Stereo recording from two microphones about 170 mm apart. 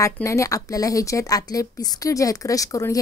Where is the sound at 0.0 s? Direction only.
15° left (ahead or behind).